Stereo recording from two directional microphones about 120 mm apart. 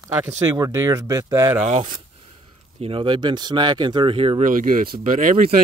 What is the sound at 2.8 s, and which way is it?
Speech, 50° right (ahead or behind).